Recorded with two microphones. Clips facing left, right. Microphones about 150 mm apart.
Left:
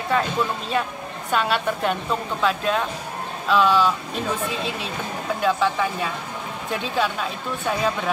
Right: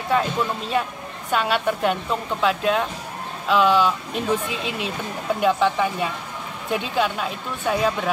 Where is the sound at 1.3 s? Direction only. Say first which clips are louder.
Right 1 dB; 10° right (ahead or behind).